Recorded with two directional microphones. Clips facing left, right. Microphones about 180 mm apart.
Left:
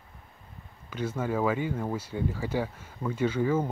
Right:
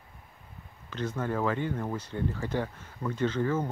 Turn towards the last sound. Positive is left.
turn(degrees=10)  # may be behind; listen again after turning